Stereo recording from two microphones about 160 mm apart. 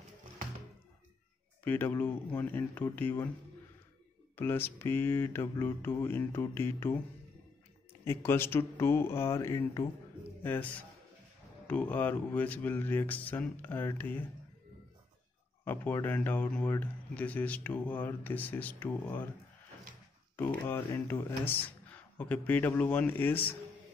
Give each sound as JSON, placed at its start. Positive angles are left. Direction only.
{"t": 1.6, "sound": "a man's voice", "side_deg": 10}
{"t": 4.4, "sound": "a man's voice", "side_deg": 15}
{"t": 8.0, "sound": "a man's voice", "side_deg": 15}
{"t": 15.6, "sound": "a man's voice", "side_deg": 15}
{"t": 20.3, "sound": "a man's voice", "side_deg": 10}